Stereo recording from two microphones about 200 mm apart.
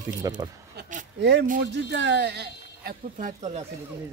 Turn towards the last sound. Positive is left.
turn(degrees=-40)  # may be behind; listen again after turning